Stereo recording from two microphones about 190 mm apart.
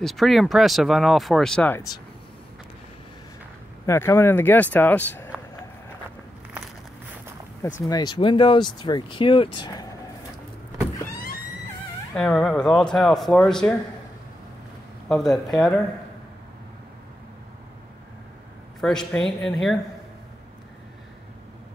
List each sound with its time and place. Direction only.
0.0 s speech: centre (ahead or behind)
3.8 s speech: 15° left (ahead or behind)
7.9 s speech: 20° left (ahead or behind)
12.1 s speech: 5° left (ahead or behind)
15.0 s speech: centre (ahead or behind)
18.8 s speech: 5° left (ahead or behind)